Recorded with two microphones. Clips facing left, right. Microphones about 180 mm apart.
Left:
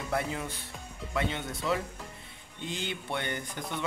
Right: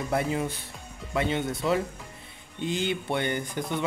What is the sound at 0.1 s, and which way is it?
Speech, 20° right (ahead or behind).